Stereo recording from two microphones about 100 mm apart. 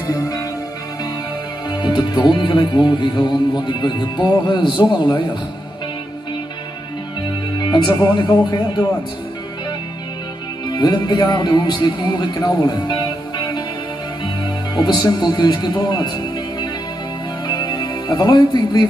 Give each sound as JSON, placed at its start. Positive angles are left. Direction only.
{"t": 0.1, "sound": "music", "side_deg": 35}
{"t": 1.7, "sound": "music", "side_deg": 50}
{"t": 7.5, "sound": "speech", "side_deg": 50}
{"t": 8.5, "sound": "music", "side_deg": 45}
{"t": 10.7, "sound": "speech", "side_deg": 45}
{"t": 14.8, "sound": "music", "side_deg": 45}